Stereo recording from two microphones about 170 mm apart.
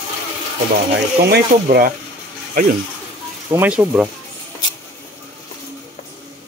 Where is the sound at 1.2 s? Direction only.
65° right (ahead or behind).